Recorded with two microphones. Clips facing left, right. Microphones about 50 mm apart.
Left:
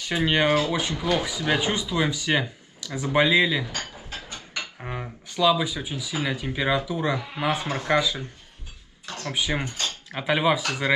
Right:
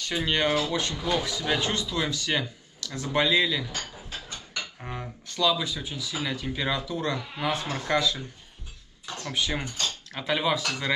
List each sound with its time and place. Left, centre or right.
0.0 s speech: centre
4.7 s speech: centre
9.3 s speech: centre